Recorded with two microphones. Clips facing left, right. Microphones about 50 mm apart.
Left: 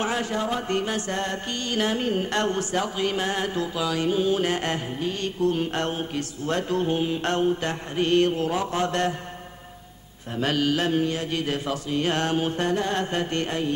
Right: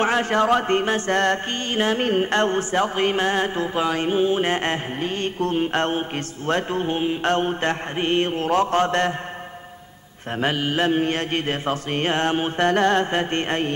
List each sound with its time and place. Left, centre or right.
0.0 s music: right
0.3 s speech: right
0.7 s music: right
7.3 s music: right
8.5 s mantra: right
10.4 s music: right
11.1 s music: right
12.6 s speech: right
12.9 s music: right